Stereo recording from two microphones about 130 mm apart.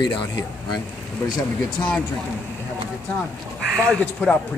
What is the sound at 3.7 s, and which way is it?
Speech, 10° left (ahead or behind).